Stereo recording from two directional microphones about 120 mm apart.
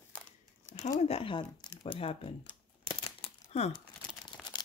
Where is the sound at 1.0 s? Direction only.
55° left (ahead or behind).